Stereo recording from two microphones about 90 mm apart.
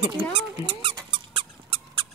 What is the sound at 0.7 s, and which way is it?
Squeak, 90° right.